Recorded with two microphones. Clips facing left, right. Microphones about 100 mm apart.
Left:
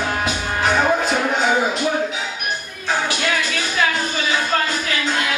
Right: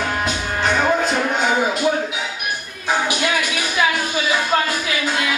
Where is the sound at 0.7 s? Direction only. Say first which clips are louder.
Even; 5° left (ahead or behind).